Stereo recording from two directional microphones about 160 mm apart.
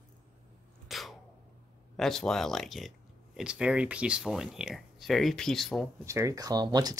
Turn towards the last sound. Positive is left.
turn(degrees=-25)  # may be behind; listen again after turning